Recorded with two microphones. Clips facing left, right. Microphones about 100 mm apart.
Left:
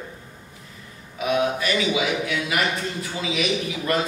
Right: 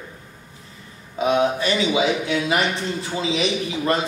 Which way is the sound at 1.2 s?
30° right (ahead or behind).